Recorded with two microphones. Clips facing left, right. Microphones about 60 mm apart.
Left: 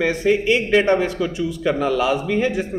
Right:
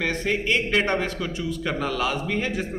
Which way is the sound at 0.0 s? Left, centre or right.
Centre.